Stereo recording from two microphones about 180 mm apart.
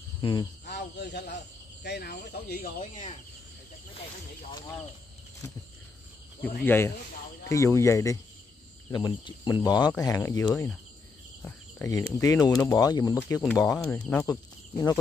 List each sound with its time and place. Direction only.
0.2 s speech: 25° left (ahead or behind)
0.7 s speech: 65° left (ahead or behind)
2.8 s speech: 40° left (ahead or behind)
6.6 s speech: 10° left (ahead or behind)
11.4 s cricket: 15° left (ahead or behind)
12.2 s speech: 20° left (ahead or behind)